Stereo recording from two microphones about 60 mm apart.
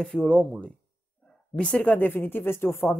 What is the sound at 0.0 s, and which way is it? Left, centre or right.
Speech, centre.